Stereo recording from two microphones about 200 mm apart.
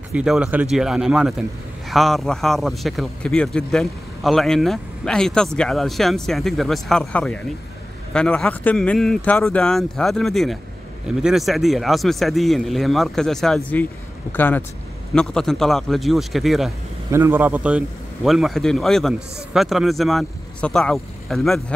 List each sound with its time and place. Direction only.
0.1 s a man's voice: 5° right (ahead or behind)
17.1 s a man's voice: 10° right (ahead or behind)